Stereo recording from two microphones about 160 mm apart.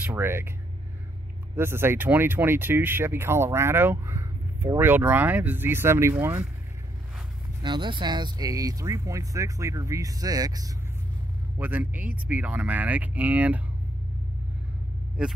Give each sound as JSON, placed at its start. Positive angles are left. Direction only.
{"t": 0.0, "sound": "speech", "side_deg": -15}
{"t": 1.6, "sound": "speech", "side_deg": -15}
{"t": 7.6, "sound": "speech", "side_deg": -30}
{"t": 11.5, "sound": "speech", "side_deg": -10}